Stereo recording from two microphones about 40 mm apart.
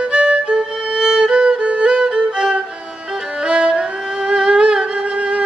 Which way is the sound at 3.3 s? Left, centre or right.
Right.